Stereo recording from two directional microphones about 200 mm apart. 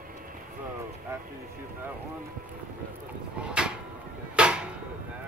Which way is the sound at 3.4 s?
5° right (ahead or behind).